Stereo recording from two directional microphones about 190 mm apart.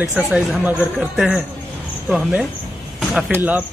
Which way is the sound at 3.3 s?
10° right (ahead or behind).